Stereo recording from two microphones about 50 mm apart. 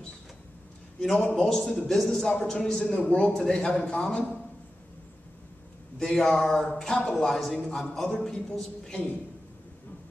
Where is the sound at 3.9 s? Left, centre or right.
Left.